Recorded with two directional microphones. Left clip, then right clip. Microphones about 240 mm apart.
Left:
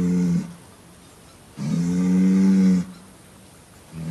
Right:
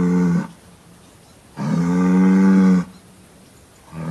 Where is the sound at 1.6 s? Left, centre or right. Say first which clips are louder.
Right 5 dB; right.